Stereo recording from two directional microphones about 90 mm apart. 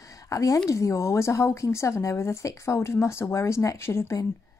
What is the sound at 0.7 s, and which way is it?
Speech, 35° left (ahead or behind).